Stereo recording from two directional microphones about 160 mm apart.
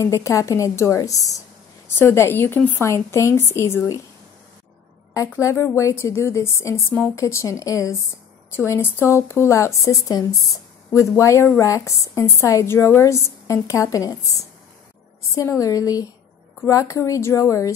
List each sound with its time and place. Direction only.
0.0 s a woman's voice: 20° left (ahead or behind)
5.1 s a woman's voice: 20° left (ahead or behind)
15.6 s a woman's voice: 20° left (ahead or behind)